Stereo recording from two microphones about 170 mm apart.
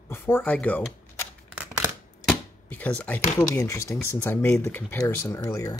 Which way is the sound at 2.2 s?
10° left (ahead or behind).